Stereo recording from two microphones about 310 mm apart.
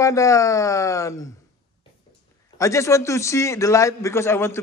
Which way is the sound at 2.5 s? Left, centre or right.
Centre.